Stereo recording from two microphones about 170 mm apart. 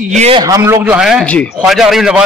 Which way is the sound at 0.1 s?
40° right (ahead or behind).